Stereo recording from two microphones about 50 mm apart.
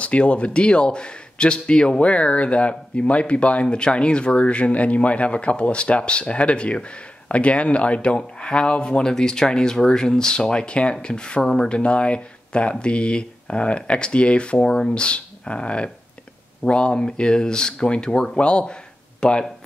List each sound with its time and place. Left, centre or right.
0.0 s speech: left